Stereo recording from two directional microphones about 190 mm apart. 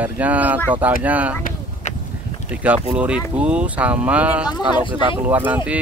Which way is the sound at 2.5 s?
5° right (ahead or behind).